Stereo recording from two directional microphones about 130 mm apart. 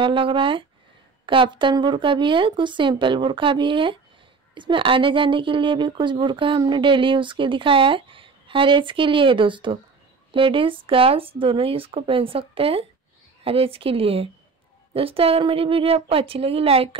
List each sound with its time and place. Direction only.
0.0 s speech: 40° right (ahead or behind)